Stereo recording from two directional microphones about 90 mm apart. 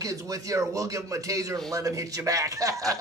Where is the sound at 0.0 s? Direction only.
40° right (ahead or behind).